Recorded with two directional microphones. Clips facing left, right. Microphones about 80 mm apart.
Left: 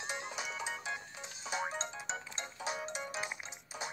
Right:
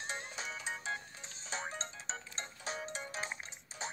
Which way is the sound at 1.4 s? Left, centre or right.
Centre.